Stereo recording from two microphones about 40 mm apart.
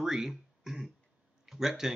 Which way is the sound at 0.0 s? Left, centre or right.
Centre.